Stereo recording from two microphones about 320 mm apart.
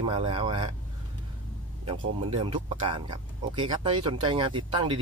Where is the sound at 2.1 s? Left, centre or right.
Centre.